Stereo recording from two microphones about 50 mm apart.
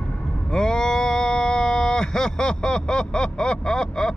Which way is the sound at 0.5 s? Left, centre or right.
Centre.